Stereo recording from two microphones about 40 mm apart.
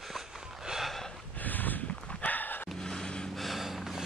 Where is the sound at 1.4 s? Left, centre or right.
Left.